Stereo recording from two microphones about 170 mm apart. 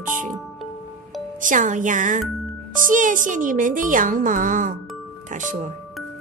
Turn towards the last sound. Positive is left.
turn(degrees=-50)  # may be behind; listen again after turning